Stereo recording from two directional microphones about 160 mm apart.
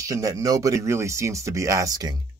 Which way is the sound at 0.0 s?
20° right (ahead or behind).